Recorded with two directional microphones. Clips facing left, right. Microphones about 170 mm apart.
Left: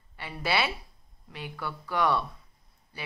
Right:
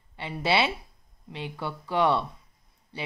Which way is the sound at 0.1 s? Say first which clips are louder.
Right 4 dB; 25° right (ahead or behind).